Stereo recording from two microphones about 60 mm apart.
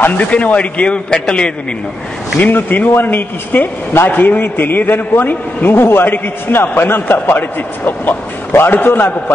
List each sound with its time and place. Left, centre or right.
0.3 s a man's voice: left
2.5 s speech: left